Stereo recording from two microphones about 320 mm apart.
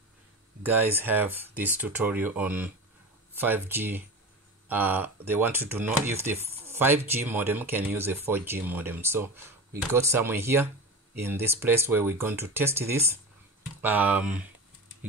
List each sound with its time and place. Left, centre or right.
0.7 s speech: centre